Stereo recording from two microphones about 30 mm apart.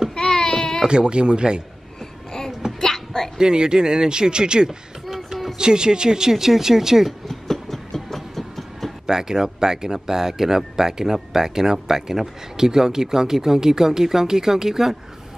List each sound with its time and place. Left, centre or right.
0.1 s a sound: left
0.8 s speech: right
2.6 s a sound: right
3.3 s speech: right
5.0 s music: centre
5.6 s speech: right
7.2 s train: centre
9.0 s speech: centre